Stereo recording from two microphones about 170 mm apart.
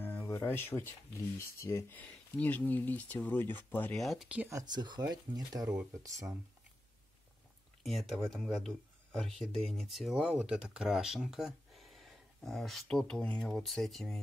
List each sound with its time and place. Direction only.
0.0 s speech: 10° left (ahead or behind); by 6.3 s 20° right (ahead or behind)
7.8 s speech: centre (ahead or behind)